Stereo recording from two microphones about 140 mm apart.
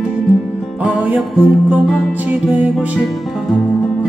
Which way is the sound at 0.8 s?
10° right (ahead or behind).